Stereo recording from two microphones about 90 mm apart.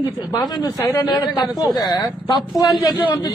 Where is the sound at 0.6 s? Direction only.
40° left (ahead or behind).